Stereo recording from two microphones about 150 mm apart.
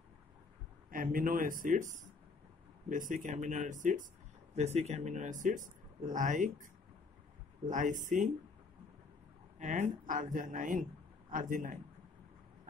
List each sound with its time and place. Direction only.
0.8 s speech: 70° right (ahead or behind)
4.6 s speech: 45° right (ahead or behind)
9.6 s speech: 55° right (ahead or behind)